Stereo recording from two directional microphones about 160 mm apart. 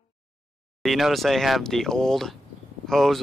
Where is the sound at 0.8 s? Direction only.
Centre (ahead or behind).